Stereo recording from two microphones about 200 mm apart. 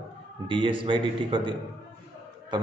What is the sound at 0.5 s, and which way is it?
A man's voice, 25° right (ahead or behind).